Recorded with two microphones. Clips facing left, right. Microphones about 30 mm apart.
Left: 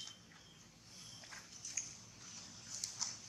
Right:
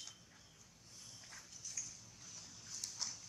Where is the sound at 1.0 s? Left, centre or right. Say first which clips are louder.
Left 2 dB; left.